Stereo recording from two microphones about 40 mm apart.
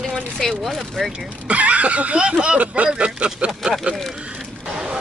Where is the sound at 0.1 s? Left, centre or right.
Centre.